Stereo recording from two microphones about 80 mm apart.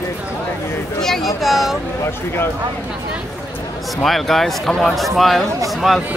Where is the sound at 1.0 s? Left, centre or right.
Centre.